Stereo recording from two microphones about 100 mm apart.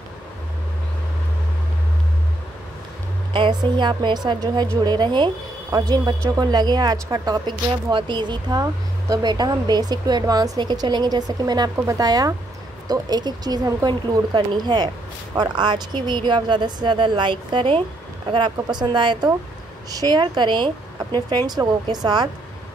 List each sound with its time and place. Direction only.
3.3 s a woman's voice: 55° right (ahead or behind)
18.3 s a woman's voice: 50° right (ahead or behind)